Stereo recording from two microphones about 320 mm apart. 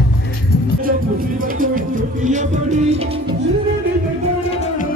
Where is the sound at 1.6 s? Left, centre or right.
Right.